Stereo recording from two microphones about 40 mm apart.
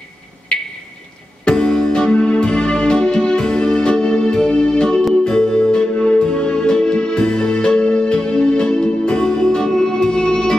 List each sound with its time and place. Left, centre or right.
1.4 s music: centre
2.1 s music: left